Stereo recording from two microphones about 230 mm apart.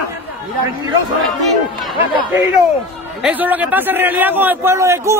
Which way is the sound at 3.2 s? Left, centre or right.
Centre.